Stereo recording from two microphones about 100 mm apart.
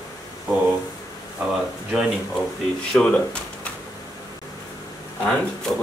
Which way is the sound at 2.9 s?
10° left (ahead or behind).